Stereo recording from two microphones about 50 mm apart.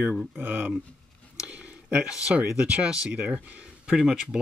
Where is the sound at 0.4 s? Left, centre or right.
Right.